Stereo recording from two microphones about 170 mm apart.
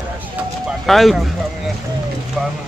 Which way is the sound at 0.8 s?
Centre (ahead or behind).